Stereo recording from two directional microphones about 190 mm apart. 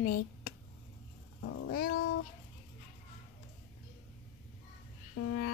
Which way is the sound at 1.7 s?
55° left (ahead or behind).